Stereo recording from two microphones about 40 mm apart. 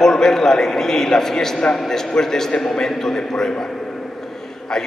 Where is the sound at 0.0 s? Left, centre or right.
Centre.